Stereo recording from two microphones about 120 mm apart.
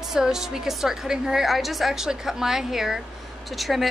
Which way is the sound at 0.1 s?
5° right (ahead or behind).